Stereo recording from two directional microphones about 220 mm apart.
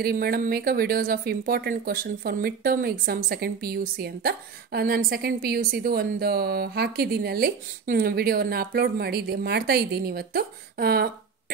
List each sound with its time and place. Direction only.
0.0 s speech: 45° right (ahead or behind)